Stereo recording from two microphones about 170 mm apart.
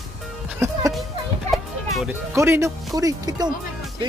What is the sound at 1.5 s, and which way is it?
Music, centre (ahead or behind).